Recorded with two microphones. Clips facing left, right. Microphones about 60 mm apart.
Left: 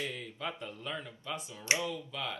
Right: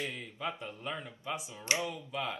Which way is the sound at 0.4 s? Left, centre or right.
Centre.